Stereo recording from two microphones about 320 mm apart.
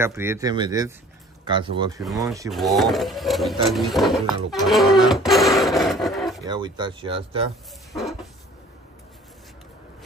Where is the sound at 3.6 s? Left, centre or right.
Centre.